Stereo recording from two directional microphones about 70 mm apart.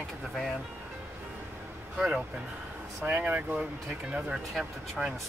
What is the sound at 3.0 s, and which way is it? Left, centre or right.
Speech, centre.